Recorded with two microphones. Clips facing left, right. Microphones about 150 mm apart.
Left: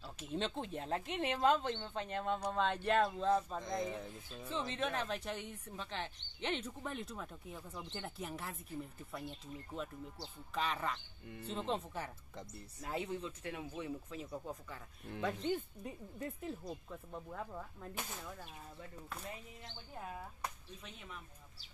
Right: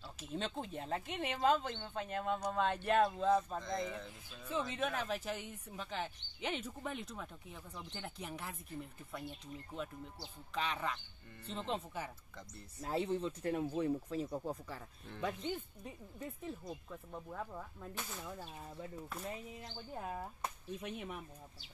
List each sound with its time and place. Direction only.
0.2 s speech: centre (ahead or behind)
3.6 s speech: 15° left (ahead or behind)
4.5 s speech: 5° right (ahead or behind)
10.5 s speech: centre (ahead or behind)
12.8 s speech: 30° right (ahead or behind)
15.5 s speech: centre (ahead or behind)
20.8 s speech: 55° right (ahead or behind)